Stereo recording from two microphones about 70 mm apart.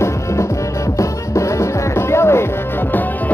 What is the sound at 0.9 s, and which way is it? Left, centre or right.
Music, left.